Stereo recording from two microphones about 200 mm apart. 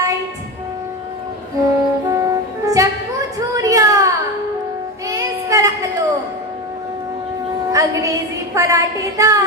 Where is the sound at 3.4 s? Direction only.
15° right (ahead or behind).